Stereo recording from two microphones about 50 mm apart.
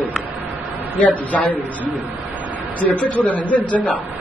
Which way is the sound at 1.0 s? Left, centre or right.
Left.